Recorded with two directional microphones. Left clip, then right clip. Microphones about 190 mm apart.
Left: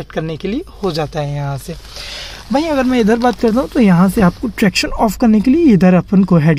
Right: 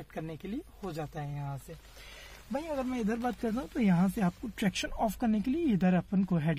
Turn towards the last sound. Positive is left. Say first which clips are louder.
# left 19 dB
turn(degrees=0)  # may be behind; listen again after turning